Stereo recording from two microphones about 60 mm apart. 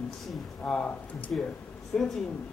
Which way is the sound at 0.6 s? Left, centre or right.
Centre.